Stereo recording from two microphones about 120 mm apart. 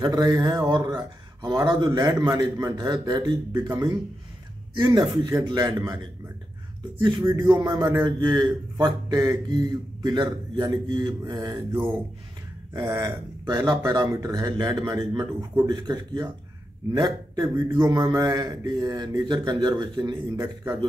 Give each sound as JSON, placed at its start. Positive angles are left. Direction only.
{"t": 0.0, "sound": "speech", "side_deg": -35}
{"t": 7.6, "sound": "speech", "side_deg": -30}
{"t": 11.7, "sound": "speech", "side_deg": -15}